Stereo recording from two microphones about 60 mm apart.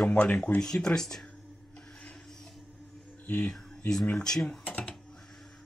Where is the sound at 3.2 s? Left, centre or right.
Centre.